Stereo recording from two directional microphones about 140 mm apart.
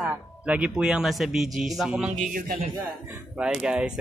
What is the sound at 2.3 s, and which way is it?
Speech, 80° right.